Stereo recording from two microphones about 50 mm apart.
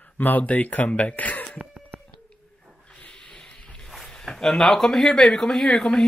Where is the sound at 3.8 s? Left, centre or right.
Centre.